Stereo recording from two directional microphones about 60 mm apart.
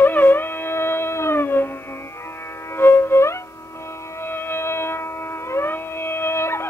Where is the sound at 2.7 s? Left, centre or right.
Left.